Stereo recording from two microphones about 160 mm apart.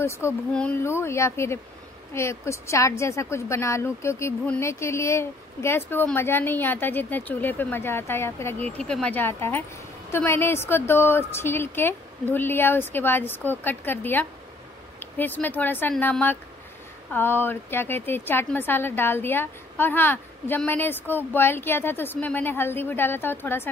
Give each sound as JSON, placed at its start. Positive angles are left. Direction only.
{"t": 0.5, "sound": "a woman's voice", "side_deg": 5}